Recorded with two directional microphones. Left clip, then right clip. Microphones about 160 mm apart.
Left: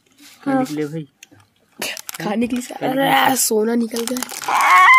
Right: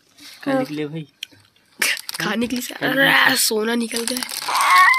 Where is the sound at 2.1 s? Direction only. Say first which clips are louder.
Left 1 dB; 15° left (ahead or behind); by 4.8 s 35° left (ahead or behind).